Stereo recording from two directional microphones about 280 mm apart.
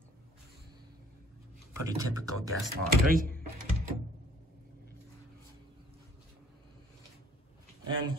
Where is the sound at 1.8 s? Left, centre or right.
Centre.